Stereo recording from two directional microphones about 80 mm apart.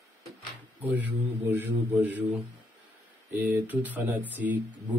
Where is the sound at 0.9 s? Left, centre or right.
Right.